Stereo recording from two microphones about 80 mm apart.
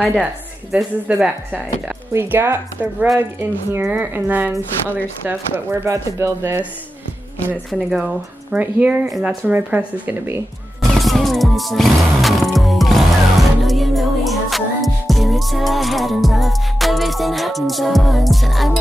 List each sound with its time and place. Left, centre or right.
1.0 s speech: centre
2.1 s speech: right
5.2 s speech: right
7.9 s speech: centre
10.8 s music: centre